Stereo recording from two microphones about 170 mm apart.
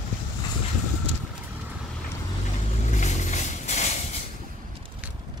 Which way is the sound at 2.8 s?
45° left (ahead or behind).